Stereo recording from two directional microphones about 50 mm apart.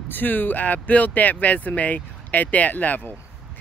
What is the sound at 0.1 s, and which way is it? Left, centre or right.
Speech, left.